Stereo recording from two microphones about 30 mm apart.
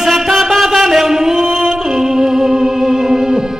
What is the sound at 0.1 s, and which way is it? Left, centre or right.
Music, centre.